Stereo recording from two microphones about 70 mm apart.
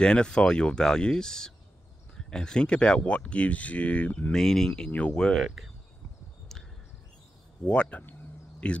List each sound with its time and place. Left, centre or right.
0.0 s speech: centre
4.3 s speech: centre
5.4 s speech: centre
6.5 s a sound: centre
7.6 s speech: centre